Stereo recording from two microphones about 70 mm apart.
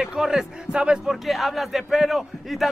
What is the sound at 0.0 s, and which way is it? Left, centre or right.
A man's voice, centre.